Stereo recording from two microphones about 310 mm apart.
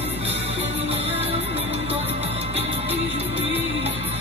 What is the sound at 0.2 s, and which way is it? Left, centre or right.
Music, centre.